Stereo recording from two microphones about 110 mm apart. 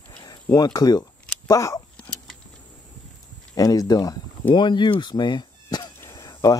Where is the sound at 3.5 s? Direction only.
30° left (ahead or behind).